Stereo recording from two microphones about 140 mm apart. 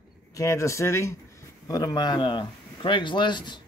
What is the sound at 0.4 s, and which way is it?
Speech, 20° left (ahead or behind).